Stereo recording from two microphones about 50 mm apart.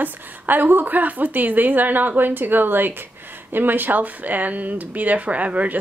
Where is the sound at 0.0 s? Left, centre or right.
Right.